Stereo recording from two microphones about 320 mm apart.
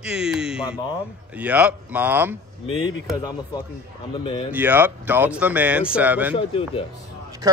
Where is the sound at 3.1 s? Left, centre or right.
Centre.